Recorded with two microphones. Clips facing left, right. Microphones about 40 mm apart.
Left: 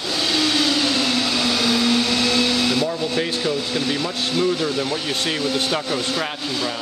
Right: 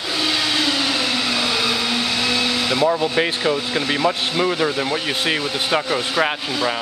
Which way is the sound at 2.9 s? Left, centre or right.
Right.